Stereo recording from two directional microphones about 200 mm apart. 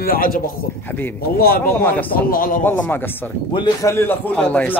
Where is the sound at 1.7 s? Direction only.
10° left (ahead or behind).